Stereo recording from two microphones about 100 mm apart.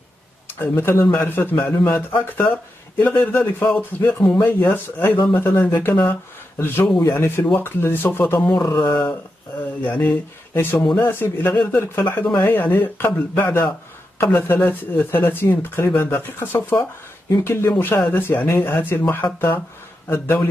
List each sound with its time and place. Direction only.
0.5 s speech: 20° left (ahead or behind)
9.8 s speech: 15° left (ahead or behind)